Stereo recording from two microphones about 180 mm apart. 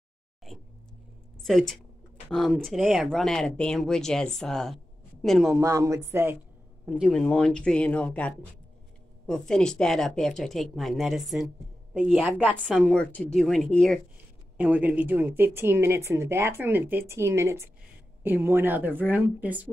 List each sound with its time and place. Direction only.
0.5 s a sound: centre (ahead or behind)
1.4 s a woman's voice: centre (ahead or behind)
5.5 s speech: 15° right (ahead or behind)
6.9 s speech: centre (ahead or behind)
14.6 s speech: 10° right (ahead or behind)